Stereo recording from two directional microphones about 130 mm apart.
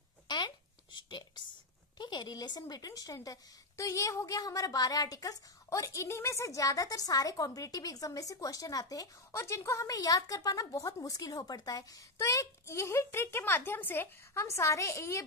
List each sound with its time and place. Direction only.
0.9 s whispering: 35° left (ahead or behind)
2.0 s a woman's voice: 35° left (ahead or behind)